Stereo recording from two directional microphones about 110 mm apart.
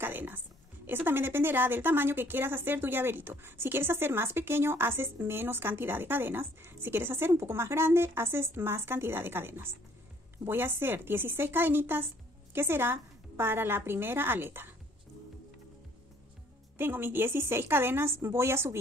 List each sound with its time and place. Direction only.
0.0 s a sound: 20° right (ahead or behind)
0.8 s a woman's voice: 20° right (ahead or behind)
16.7 s a woman's voice: 20° right (ahead or behind)